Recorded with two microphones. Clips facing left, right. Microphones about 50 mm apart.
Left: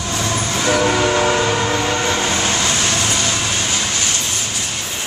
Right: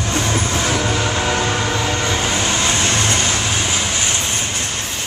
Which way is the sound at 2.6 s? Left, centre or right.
Right.